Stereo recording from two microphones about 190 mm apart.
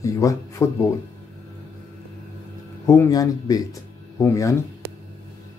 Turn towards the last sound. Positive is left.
turn(degrees=15)  # may be behind; listen again after turning